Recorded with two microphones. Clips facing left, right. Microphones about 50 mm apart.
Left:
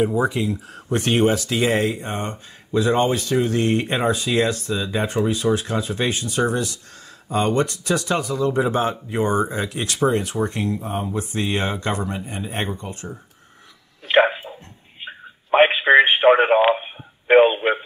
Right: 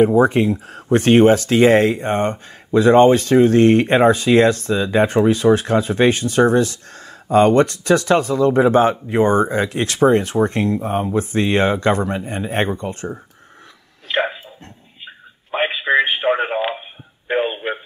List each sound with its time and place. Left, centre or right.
0.0 s speech: right
14.0 s a sound: left
15.0 s radio: left